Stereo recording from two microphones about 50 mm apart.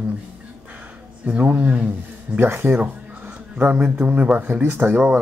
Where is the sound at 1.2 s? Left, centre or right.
Right.